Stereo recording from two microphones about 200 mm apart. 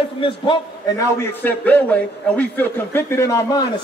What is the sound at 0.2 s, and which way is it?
A man's voice, 20° left (ahead or behind).